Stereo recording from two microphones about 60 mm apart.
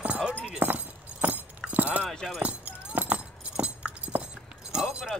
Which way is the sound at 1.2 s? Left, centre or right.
Right.